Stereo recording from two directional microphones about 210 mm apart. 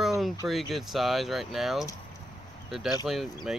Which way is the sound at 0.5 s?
Centre (ahead or behind).